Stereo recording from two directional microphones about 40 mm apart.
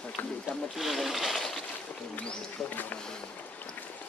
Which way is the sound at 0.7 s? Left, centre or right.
Centre.